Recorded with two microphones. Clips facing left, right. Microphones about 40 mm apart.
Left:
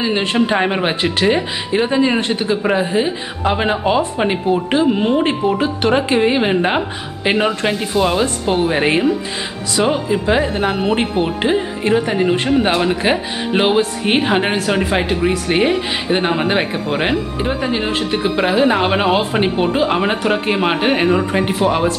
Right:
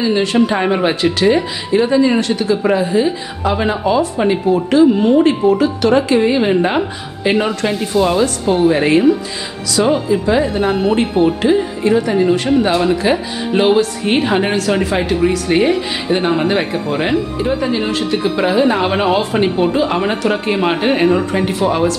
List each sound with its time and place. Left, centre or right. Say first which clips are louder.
0.0 s speech: right 3 dB; left
10.0 s speech: right 2 dB; left
10.7 s speech: right 3 dB; centre